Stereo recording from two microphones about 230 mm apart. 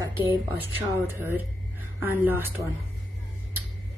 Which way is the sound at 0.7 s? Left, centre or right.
Centre.